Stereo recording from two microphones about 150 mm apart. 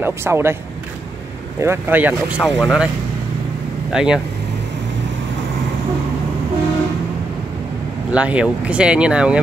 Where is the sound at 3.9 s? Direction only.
5° right (ahead or behind).